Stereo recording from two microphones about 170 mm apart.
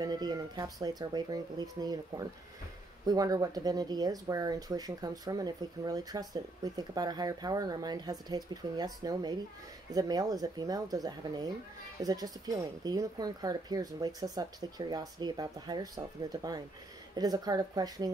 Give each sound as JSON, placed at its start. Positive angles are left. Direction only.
{"t": 0.0, "sound": "speech", "side_deg": -25}